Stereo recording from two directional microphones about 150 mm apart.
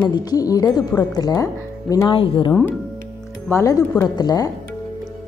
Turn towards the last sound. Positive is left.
turn(degrees=25)  # may be behind; listen again after turning